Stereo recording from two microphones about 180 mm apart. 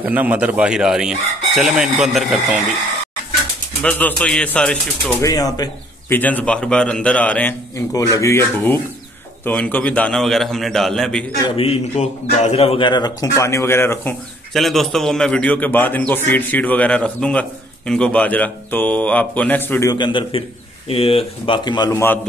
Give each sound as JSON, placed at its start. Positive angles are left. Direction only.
{"t": 0.0, "sound": "chicken", "side_deg": -10}
{"t": 3.8, "sound": "chicken", "side_deg": 10}
{"t": 5.2, "sound": "a man's voice", "side_deg": 20}
{"t": 9.4, "sound": "chicken", "side_deg": 10}
{"t": 11.5, "sound": "a man's voice", "side_deg": 35}
{"t": 14.5, "sound": "a man's voice", "side_deg": 0}
{"t": 19.9, "sound": "speech", "side_deg": 25}